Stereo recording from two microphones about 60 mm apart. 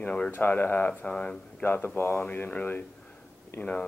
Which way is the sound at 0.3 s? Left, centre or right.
Left.